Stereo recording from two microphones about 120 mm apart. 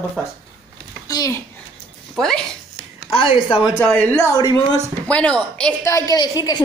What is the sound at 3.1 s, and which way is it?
Speech, 50° left (ahead or behind).